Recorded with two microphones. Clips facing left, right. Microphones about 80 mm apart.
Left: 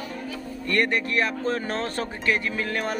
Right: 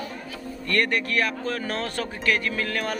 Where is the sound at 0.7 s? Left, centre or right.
Left.